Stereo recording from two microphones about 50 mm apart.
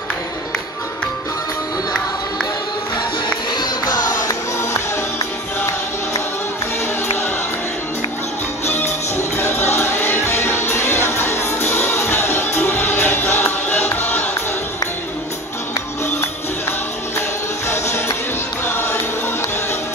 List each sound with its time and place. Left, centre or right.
4.3 s music: left
8.6 s music: left
9.9 s music: left
10.2 s music: left
12.5 s music: left
17.6 s music: left
18.7 s music: left